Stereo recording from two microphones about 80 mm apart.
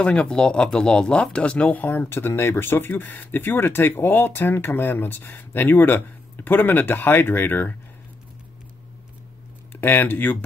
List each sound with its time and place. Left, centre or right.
0.0 s speech: centre
9.7 s speech: left